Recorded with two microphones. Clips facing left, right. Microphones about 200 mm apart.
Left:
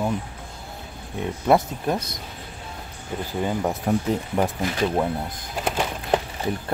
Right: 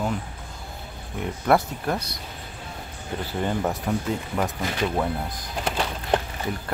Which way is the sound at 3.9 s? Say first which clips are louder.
Left 6 dB; 40° left (ahead or behind).